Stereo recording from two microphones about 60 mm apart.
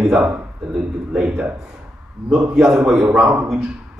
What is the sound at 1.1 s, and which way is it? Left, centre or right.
Speech, centre.